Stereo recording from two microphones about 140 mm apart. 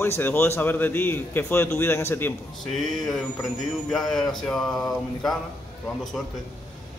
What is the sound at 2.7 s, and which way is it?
Speech, centre (ahead or behind).